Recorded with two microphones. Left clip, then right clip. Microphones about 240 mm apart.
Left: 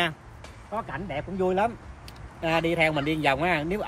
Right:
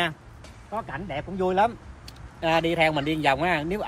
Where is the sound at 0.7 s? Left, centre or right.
Centre.